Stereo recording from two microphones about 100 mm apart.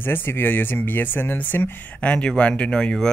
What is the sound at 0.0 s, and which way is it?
Speech, 20° left (ahead or behind).